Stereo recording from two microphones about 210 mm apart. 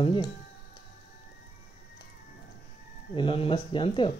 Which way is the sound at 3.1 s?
25° left (ahead or behind).